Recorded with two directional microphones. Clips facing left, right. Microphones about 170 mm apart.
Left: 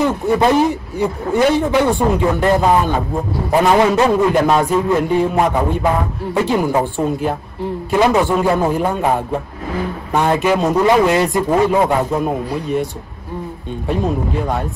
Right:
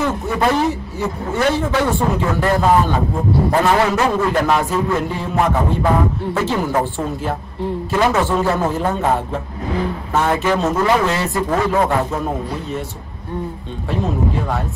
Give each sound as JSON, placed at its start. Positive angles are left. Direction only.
{"t": 0.0, "sound": "a man's voice", "side_deg": 20}
{"t": 10.1, "sound": "a man's voice", "side_deg": 15}